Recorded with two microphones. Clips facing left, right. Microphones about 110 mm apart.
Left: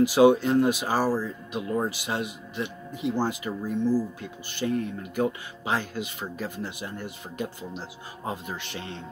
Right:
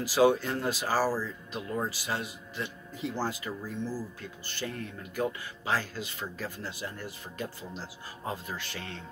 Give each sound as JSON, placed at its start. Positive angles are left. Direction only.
{"t": 0.0, "sound": "speech", "side_deg": 20}